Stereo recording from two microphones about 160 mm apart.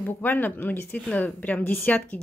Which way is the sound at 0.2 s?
10° left (ahead or behind).